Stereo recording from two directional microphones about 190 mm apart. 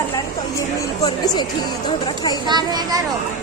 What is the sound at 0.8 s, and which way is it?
Speech, 20° left (ahead or behind).